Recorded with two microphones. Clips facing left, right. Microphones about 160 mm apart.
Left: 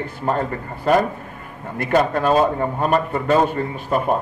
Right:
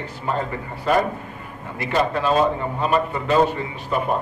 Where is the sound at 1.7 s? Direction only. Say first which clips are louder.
Left 3 dB; 50° left (ahead or behind).